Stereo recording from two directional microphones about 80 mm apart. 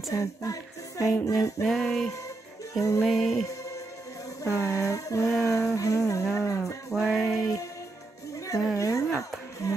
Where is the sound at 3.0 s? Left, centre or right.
Centre.